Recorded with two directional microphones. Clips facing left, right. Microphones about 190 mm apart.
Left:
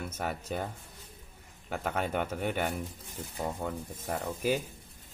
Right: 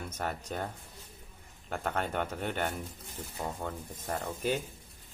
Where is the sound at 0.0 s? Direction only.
10° left (ahead or behind).